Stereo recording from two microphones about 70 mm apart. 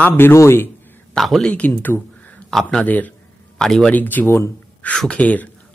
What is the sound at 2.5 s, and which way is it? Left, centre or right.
Speech, centre.